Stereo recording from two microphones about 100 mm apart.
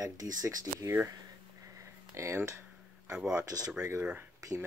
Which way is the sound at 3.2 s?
5° right (ahead or behind).